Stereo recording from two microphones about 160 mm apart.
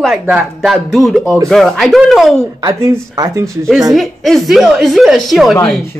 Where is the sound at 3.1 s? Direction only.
20° right (ahead or behind).